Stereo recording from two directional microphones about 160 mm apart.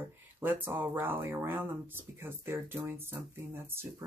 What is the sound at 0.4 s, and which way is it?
Speech, 15° right (ahead or behind).